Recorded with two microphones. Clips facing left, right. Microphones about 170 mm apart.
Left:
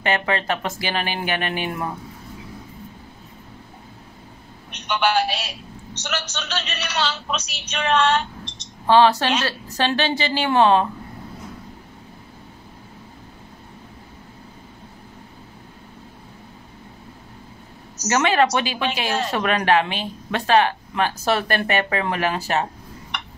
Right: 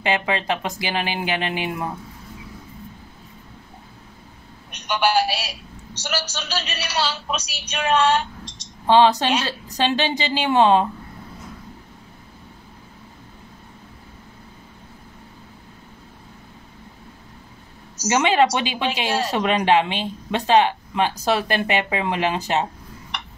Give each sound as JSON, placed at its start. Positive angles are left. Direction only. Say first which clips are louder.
{"t": 0.0, "sound": "a woman's voice", "louder": "even", "side_deg": -15}
{"t": 4.8, "sound": "a man's voice", "louder": "right 1 dB", "side_deg": -10}
{"t": 18.0, "sound": "a woman's voice", "louder": "right 1 dB", "side_deg": -15}